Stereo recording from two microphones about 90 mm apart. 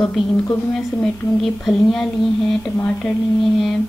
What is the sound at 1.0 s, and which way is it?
A woman's voice, centre (ahead or behind).